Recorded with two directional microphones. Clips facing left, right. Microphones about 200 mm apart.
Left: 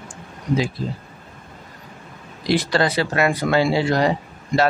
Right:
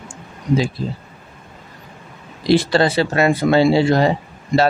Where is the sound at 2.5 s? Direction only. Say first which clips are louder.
Right 5 dB; 25° right (ahead or behind).